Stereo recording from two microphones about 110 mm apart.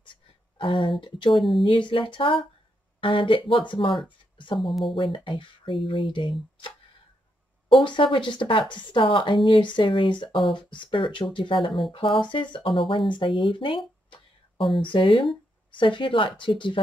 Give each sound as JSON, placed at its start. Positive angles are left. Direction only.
{"t": 0.0, "sound": "a sound", "side_deg": 50}
{"t": 1.3, "sound": "speech", "side_deg": 0}
{"t": 1.6, "sound": "speech", "side_deg": 50}
{"t": 4.0, "sound": "a sound", "side_deg": 45}
{"t": 4.6, "sound": "speech", "side_deg": 0}
{"t": 4.9, "sound": "speech", "side_deg": 50}
{"t": 7.8, "sound": "speech", "side_deg": 50}